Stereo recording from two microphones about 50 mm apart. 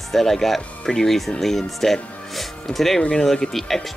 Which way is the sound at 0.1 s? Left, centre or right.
Centre.